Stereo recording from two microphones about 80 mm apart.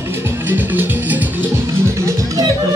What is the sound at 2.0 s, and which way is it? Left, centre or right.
Music, right.